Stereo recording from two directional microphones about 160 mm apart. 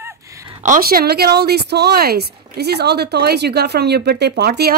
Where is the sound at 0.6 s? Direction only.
60° right (ahead or behind); by 4.8 s 75° right (ahead or behind).